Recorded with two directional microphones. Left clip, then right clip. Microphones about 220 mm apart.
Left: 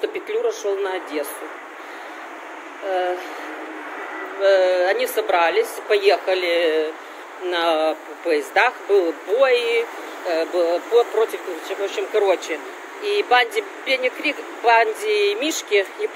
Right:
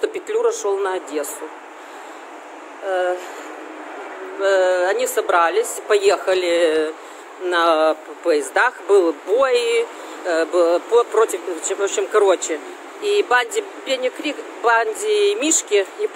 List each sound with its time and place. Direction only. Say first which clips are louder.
0.0 s speech: right 3 dB; 20° right (ahead or behind)
4.4 s speech: even; 15° right (ahead or behind)